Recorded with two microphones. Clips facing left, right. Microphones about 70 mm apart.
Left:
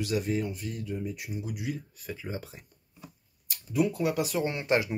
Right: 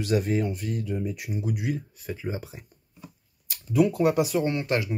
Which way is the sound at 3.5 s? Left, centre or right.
Right.